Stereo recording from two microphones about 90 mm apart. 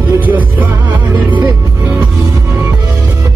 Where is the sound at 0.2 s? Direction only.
20° right (ahead or behind).